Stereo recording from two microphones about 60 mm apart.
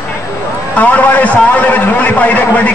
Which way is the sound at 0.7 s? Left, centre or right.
Left.